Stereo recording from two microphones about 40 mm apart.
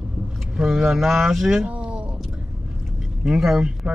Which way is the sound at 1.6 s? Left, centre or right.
Right.